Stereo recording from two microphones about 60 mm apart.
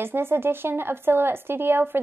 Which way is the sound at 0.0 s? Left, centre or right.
Right.